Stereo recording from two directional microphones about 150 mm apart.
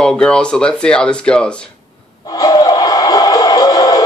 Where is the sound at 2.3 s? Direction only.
25° left (ahead or behind).